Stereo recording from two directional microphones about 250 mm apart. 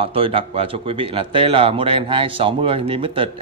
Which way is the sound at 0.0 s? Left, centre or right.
Right.